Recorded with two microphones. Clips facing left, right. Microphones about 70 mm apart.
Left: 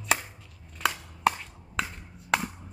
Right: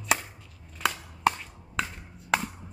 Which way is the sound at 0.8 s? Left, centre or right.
Centre.